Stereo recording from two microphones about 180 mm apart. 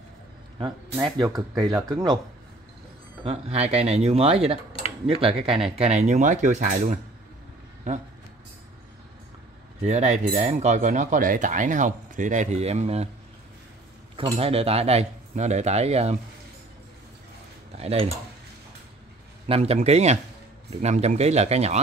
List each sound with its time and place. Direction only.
0.6 s speech: 25° right (ahead or behind)
3.3 s speech: 35° right (ahead or behind)
9.8 s speech: 40° right (ahead or behind)
14.4 s speech: 35° right (ahead or behind)
17.7 s speech: 35° right (ahead or behind)
19.4 s speech: 35° right (ahead or behind)